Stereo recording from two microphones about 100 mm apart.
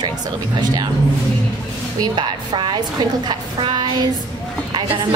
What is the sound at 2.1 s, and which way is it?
A woman's voice, 55° right (ahead or behind).